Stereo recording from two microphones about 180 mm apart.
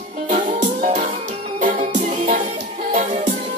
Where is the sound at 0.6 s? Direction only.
45° right (ahead or behind).